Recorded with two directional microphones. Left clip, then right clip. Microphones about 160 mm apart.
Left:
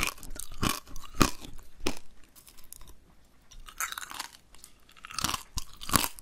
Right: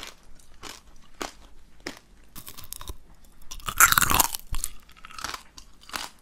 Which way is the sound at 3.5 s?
50° right (ahead or behind).